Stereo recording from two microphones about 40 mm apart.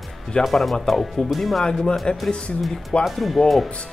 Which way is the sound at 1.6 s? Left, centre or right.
Centre.